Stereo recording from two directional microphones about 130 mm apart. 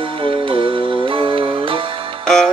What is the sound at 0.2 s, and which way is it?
Music, 45° right (ahead or behind).